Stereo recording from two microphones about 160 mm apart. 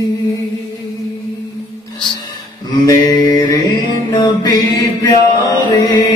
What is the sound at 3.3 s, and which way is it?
Carnatic music, 30° left (ahead or behind).